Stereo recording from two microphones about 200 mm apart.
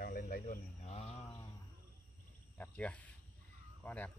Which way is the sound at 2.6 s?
5° left (ahead or behind).